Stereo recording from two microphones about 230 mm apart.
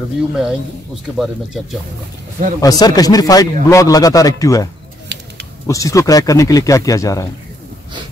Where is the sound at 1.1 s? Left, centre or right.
Centre.